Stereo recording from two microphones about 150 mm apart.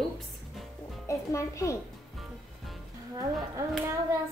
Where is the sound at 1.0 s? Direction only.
20° left (ahead or behind).